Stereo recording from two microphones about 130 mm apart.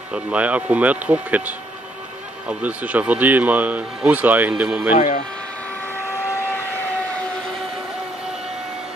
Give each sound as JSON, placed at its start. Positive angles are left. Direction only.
{"t": 0.1, "sound": "speech", "side_deg": -10}
{"t": 4.9, "sound": "speech", "side_deg": 65}